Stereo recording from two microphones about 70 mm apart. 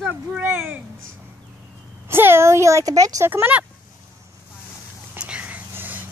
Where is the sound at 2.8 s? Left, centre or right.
Right.